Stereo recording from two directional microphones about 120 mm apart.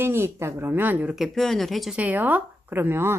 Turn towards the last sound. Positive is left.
turn(degrees=-20)  # may be behind; listen again after turning